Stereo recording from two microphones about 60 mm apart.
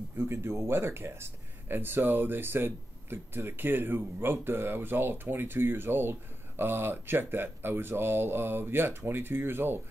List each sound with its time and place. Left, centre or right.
0.3 s speech: right